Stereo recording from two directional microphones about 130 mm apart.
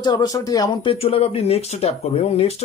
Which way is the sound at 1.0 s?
50° left (ahead or behind).